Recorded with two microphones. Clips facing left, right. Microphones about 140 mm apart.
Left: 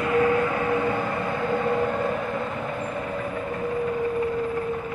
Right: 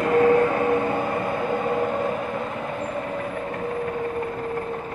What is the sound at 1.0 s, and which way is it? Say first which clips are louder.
Train: right 2 dB; 20° right (ahead or behind).